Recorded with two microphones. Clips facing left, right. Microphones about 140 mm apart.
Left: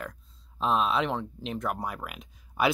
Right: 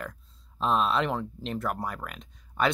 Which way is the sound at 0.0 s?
Centre (ahead or behind).